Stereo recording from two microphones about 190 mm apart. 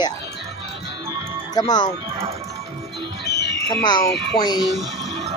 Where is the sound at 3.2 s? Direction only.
60° left (ahead or behind).